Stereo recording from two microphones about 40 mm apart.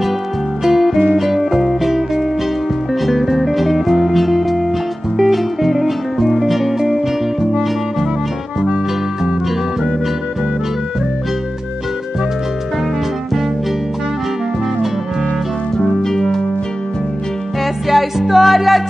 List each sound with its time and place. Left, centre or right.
0.7 s music: centre
16.0 s music: centre
17.8 s music: centre